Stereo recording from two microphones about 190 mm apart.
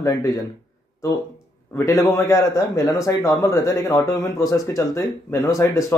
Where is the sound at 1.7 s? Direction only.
15° left (ahead or behind).